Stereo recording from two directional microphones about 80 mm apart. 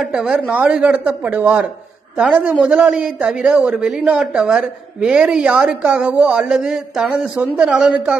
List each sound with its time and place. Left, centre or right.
0.0 s a man's voice: centre